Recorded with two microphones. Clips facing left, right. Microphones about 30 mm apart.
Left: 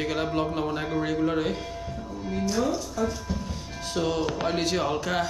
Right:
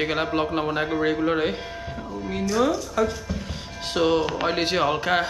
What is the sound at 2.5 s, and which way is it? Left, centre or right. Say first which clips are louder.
Speech: right 7 dB; right.